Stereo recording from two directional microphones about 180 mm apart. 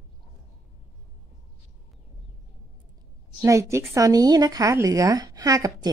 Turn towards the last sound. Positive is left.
turn(degrees=-20)  # may be behind; listen again after turning